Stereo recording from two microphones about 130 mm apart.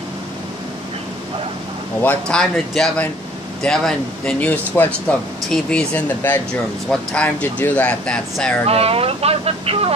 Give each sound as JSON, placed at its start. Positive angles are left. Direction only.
{"t": 2.0, "sound": "speech", "side_deg": 5}
{"t": 8.6, "sound": "speech", "side_deg": -50}